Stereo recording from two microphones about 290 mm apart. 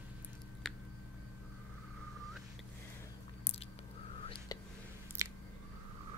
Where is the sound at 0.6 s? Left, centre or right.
Centre.